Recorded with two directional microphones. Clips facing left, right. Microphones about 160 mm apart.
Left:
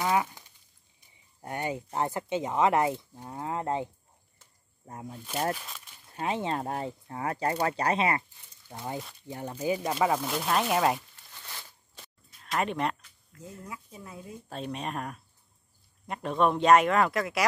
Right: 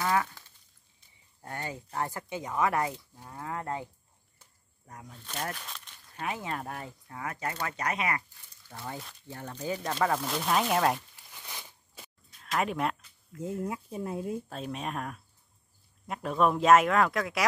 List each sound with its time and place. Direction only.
0.0 s a sound: 15° left (ahead or behind)
1.4 s speech: 20° left (ahead or behind)
5.1 s speech: 10° left (ahead or behind)
6.1 s speech: 25° left (ahead or behind); by 11.1 s centre (ahead or behind)
11.2 s a sound: 15° right (ahead or behind)
13.9 s speech: 55° right (ahead or behind)
14.5 s speech: centre (ahead or behind)